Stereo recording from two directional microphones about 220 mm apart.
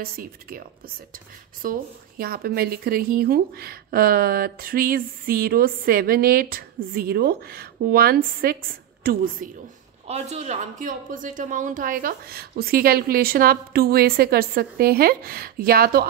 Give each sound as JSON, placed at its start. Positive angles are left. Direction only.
{"t": 0.0, "sound": "a woman's voice", "side_deg": -40}
{"t": 10.0, "sound": "speech", "side_deg": -30}